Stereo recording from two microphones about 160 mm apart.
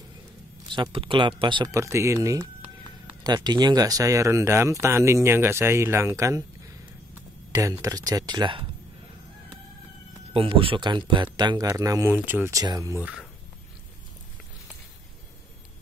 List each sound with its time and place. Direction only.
0.7 s speech: 30° right (ahead or behind)
7.5 s speech: 20° right (ahead or behind)
10.3 s speech: 35° right (ahead or behind)